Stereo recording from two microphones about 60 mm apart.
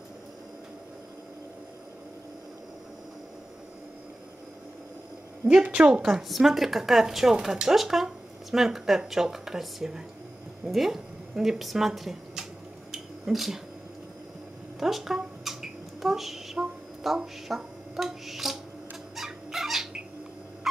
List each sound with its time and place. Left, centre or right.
5.5 s a woman's voice: centre
6.0 s speech: centre
12.9 s a sound: centre
14.8 s a sound: centre
17.0 s speech: centre
19.1 s cat: centre